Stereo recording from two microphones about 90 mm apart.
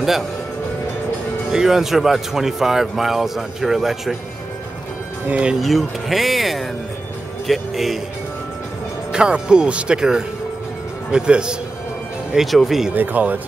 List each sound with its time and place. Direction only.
1.5 s speech: 5° right (ahead or behind)
5.3 s speech: 10° right (ahead or behind)
5.6 s speech: centre (ahead or behind)
9.1 s speech: 10° right (ahead or behind)
12.9 s speech: 20° right (ahead or behind)